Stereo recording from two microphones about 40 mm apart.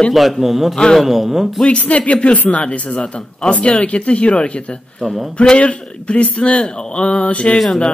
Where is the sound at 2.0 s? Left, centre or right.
Left.